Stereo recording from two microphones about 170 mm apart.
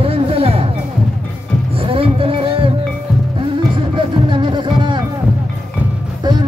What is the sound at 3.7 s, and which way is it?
Music, 30° right (ahead or behind).